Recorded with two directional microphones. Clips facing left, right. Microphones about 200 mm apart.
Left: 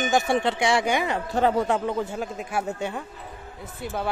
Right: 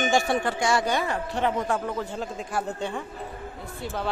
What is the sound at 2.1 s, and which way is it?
Speech, 10° left (ahead or behind).